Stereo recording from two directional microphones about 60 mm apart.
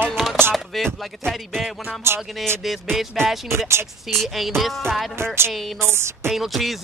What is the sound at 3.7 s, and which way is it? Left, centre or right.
Speech, right.